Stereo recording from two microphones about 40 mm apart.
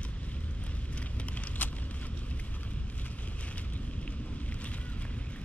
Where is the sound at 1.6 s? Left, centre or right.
Left.